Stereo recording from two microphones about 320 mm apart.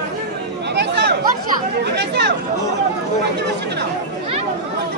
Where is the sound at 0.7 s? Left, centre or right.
Right.